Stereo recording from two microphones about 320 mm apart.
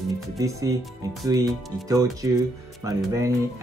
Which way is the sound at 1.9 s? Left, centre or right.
Centre.